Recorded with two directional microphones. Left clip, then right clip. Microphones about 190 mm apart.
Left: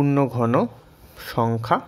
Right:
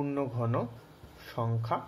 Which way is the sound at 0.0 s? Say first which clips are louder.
Left 12 dB; 55° left (ahead or behind).